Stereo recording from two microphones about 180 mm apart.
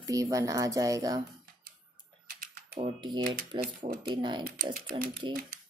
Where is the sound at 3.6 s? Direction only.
45° right (ahead or behind).